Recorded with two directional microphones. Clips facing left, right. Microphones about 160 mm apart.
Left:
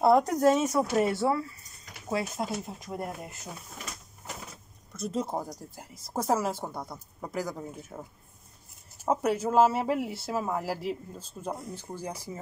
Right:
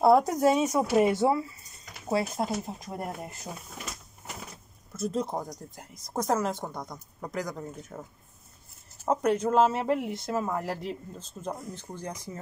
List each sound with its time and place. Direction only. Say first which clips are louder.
0.0 s speech: right 1 dB; 5° right (ahead or behind)
2.0 s speech: right 3 dB; 35° right (ahead or behind)
4.9 s speech: right 1 dB; centre (ahead or behind)